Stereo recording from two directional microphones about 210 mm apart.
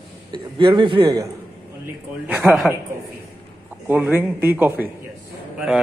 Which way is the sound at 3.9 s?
10° right (ahead or behind).